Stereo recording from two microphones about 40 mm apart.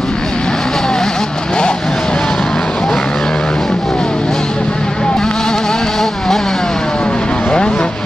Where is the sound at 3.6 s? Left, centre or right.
Centre.